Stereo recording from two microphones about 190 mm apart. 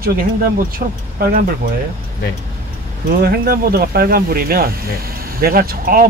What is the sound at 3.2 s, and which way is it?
Speech, 50° right (ahead or behind).